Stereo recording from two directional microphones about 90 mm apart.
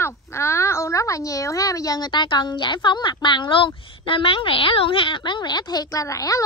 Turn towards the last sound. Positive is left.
turn(degrees=40)  # may be behind; listen again after turning